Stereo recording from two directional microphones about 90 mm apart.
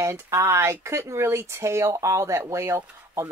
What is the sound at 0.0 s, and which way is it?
Speech, 35° right (ahead or behind).